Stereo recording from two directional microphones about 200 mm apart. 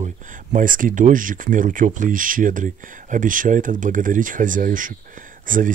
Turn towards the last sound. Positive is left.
turn(degrees=-40)  # may be behind; listen again after turning